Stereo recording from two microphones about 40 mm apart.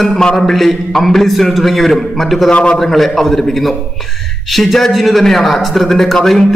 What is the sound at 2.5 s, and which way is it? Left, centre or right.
Speech, left.